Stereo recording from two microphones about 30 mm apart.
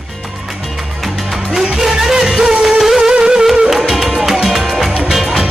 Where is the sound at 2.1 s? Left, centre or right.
Right.